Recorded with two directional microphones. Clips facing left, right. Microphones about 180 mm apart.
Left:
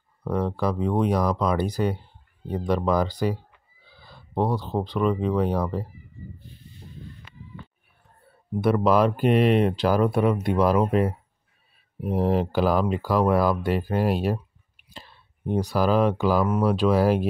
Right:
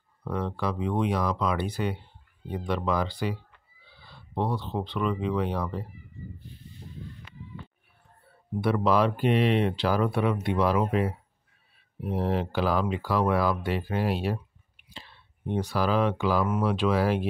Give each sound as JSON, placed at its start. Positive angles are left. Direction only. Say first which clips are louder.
{"t": 0.2, "sound": "speech", "louder": "left 5 dB", "side_deg": 40}
{"t": 8.5, "sound": "speech", "louder": "left 4 dB", "side_deg": 45}